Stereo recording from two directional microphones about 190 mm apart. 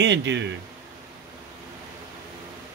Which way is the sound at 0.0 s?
70° right (ahead or behind).